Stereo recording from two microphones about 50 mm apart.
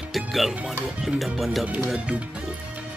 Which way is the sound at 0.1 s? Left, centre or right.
Centre.